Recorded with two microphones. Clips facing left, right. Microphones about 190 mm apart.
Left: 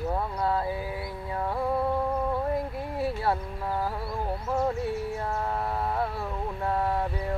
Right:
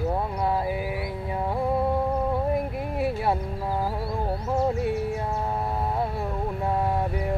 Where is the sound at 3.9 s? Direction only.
25° right (ahead or behind).